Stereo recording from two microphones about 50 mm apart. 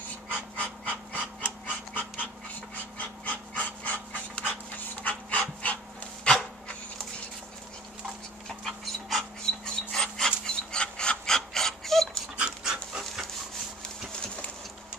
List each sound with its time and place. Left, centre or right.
0.6 s pant: left
3.0 s dog: left
8.5 s dog: centre
12.4 s dog: centre